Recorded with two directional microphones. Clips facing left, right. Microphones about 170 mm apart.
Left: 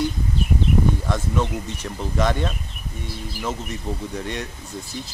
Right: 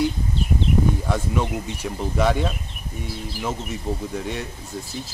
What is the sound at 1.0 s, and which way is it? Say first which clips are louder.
Speech: even; 10° right (ahead or behind).